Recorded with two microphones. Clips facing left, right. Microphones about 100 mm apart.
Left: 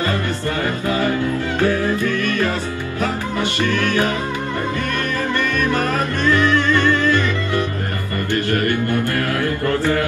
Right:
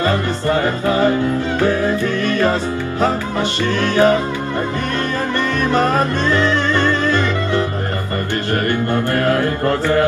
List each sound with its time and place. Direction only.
0.0 s music: 25° right (ahead or behind)
5.6 s music: 20° right (ahead or behind)